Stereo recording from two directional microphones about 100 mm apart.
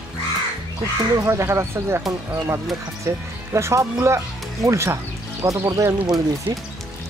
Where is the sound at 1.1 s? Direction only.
30° right (ahead or behind).